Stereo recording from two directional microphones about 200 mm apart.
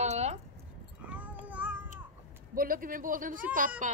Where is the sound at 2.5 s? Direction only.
45° right (ahead or behind).